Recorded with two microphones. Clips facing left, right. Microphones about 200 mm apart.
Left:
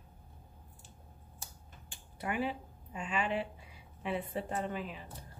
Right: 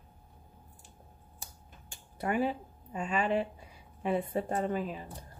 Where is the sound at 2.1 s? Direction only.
45° right (ahead or behind).